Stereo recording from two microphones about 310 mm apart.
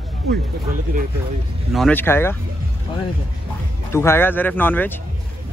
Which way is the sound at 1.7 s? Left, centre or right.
Centre.